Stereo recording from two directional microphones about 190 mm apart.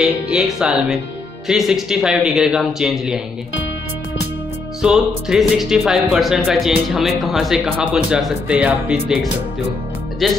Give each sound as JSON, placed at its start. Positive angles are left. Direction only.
{"t": 0.0, "sound": "speech", "side_deg": -5}
{"t": 4.8, "sound": "speech", "side_deg": -5}